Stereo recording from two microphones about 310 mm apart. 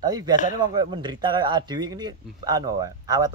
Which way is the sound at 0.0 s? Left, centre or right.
Centre.